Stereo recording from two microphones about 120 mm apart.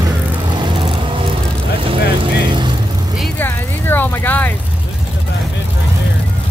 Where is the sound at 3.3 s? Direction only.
15° left (ahead or behind).